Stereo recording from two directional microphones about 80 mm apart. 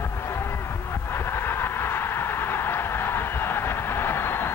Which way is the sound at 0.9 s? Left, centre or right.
Left.